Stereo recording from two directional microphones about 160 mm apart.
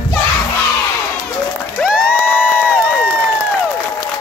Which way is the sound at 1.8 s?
5° right (ahead or behind).